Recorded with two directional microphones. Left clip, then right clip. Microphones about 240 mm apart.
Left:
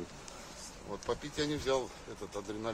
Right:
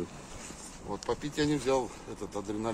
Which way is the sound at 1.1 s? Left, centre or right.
Right.